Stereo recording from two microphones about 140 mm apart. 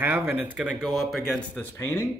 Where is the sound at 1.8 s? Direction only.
20° left (ahead or behind).